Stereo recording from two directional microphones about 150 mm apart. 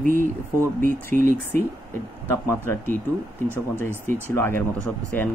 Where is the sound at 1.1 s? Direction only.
60° right (ahead or behind).